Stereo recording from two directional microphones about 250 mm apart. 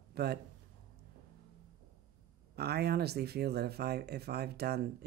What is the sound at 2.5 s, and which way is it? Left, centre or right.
Speech, right.